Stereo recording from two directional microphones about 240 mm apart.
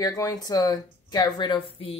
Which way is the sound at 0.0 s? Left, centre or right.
Centre.